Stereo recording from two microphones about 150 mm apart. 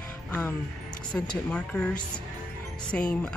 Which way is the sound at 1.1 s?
5° left (ahead or behind).